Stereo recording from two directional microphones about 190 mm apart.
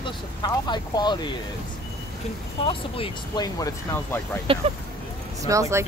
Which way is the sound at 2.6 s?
25° left (ahead or behind).